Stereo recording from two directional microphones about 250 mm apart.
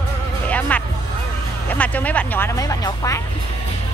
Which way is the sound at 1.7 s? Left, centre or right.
Centre.